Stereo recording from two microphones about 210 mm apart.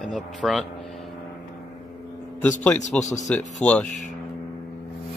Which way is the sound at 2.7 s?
35° left (ahead or behind).